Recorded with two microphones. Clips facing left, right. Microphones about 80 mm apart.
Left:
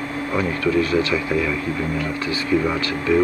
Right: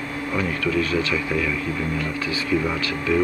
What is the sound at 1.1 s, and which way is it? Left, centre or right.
Speech, centre.